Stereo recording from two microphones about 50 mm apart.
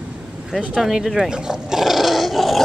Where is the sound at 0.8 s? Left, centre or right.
Centre.